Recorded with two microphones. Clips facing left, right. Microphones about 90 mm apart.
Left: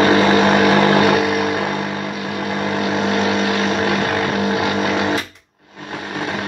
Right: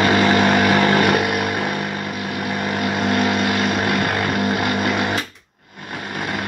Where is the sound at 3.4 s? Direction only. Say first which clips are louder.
Left 2 dB; 20° left (ahead or behind).